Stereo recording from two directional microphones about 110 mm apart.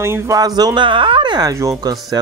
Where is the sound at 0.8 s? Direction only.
50° right (ahead or behind).